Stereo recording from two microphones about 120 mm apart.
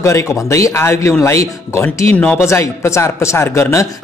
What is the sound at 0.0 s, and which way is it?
Speech, 25° left (ahead or behind).